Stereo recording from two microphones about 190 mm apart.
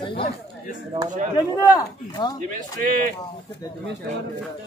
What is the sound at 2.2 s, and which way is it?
Speech, 25° left (ahead or behind).